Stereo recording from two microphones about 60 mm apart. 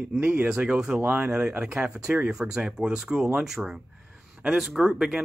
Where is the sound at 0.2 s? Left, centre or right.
Centre.